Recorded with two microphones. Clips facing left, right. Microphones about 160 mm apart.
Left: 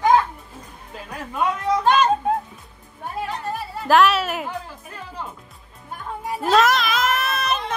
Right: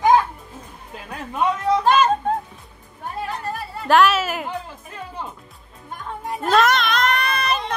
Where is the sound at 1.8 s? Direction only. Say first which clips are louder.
Even; centre (ahead or behind).